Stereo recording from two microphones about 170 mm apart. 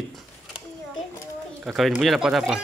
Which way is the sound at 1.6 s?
Centre (ahead or behind).